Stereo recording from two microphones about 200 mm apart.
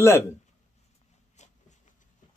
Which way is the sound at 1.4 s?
35° left (ahead or behind).